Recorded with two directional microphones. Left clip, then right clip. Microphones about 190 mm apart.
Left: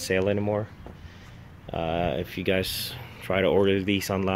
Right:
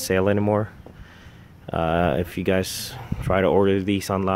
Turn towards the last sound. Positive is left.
turn(degrees=-20)  # may be behind; listen again after turning